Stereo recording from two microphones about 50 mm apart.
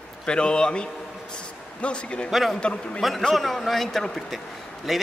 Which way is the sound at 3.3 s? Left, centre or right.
Centre.